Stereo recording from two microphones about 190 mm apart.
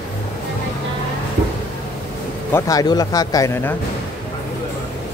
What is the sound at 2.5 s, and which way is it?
Speech, 20° left (ahead or behind).